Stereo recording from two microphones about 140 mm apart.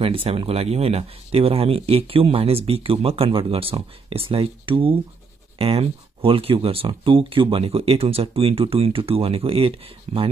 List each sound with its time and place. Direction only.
0.0 s speech: 40° right (ahead or behind)